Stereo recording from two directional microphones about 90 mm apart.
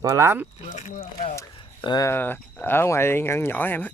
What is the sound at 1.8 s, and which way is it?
Speech, 55° left (ahead or behind).